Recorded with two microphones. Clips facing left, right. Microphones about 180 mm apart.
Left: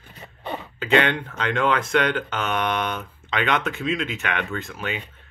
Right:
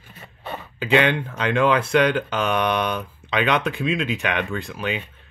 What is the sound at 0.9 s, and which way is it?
Speech, 10° right (ahead or behind).